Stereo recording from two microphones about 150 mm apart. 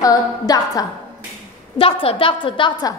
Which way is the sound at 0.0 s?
25° left (ahead or behind).